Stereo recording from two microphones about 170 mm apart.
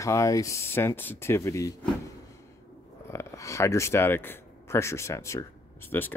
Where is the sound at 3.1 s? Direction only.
15° left (ahead or behind).